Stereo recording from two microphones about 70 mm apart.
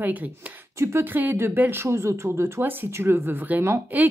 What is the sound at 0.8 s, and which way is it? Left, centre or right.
Speech, right.